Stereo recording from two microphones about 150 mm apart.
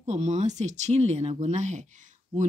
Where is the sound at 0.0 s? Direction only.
50° right (ahead or behind).